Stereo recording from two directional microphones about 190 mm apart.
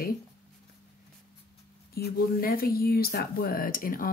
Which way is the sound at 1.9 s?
55° left (ahead or behind).